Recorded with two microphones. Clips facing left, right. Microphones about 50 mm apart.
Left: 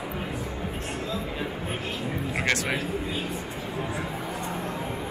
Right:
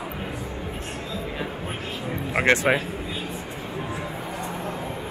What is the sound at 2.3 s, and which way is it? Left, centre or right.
Music, right.